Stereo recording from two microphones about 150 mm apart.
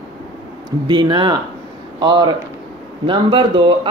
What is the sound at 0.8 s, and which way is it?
Speech, 30° right (ahead or behind).